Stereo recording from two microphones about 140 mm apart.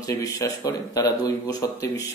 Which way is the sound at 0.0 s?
25° left (ahead or behind).